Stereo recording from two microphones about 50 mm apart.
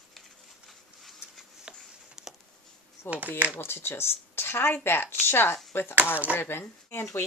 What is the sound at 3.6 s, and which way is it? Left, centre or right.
Speech, left.